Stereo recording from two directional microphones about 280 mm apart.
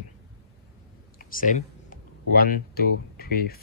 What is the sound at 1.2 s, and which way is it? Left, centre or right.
Speech, left.